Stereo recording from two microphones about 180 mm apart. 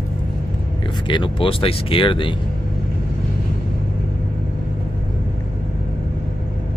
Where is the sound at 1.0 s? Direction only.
25° left (ahead or behind).